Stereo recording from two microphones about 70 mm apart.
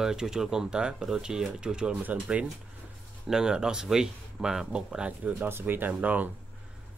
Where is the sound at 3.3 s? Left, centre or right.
Centre.